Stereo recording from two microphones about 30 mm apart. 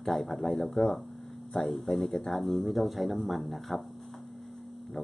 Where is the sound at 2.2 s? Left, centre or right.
Centre.